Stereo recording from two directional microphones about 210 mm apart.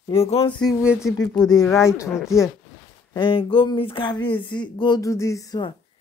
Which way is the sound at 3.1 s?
25° left (ahead or behind).